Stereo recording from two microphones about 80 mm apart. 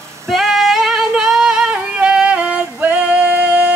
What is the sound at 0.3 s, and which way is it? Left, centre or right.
Singing, centre.